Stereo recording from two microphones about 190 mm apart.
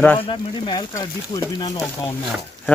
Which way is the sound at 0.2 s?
25° left (ahead or behind).